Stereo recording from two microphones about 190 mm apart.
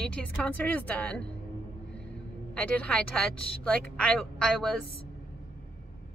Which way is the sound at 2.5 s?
5° left (ahead or behind).